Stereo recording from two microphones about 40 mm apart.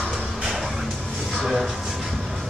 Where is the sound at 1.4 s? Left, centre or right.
Centre.